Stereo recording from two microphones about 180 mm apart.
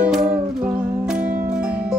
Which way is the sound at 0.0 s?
5° right (ahead or behind).